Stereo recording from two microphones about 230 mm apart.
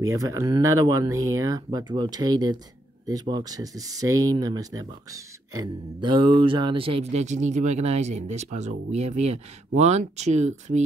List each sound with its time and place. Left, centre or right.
0.0 s speech: centre; by 10.8 s right